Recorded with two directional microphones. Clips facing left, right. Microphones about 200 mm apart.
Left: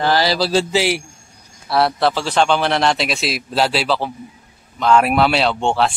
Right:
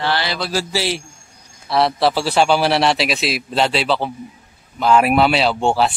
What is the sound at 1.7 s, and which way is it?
A man's voice, centre (ahead or behind).